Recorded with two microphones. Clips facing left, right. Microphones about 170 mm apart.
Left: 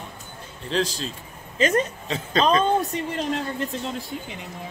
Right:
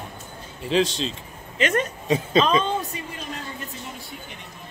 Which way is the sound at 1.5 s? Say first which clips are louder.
Left 2 dB; 35° left (ahead or behind).